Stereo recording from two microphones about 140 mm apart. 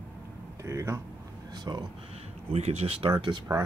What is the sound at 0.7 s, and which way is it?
Speech, 20° right (ahead or behind).